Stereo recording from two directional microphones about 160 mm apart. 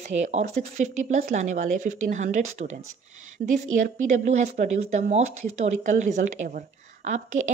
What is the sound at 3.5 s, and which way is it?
A woman's voice, 50° right (ahead or behind).